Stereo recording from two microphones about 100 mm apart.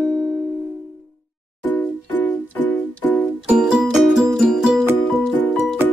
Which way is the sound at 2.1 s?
15° left (ahead or behind).